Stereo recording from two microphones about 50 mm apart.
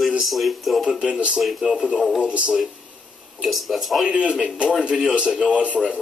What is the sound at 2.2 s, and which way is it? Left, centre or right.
Speech, right.